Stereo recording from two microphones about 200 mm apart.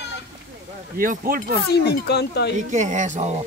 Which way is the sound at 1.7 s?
55° left (ahead or behind).